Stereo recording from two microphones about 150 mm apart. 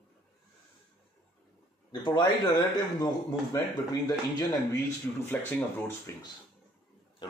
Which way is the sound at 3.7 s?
25° left (ahead or behind).